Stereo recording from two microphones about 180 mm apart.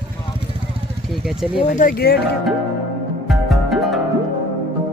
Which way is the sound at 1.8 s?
55° left (ahead or behind).